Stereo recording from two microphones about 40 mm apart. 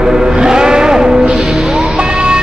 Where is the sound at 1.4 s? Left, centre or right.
Centre.